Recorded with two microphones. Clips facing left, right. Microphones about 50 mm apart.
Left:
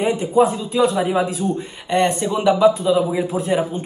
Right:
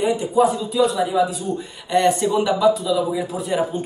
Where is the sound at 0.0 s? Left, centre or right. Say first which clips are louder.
Left 1 dB; left.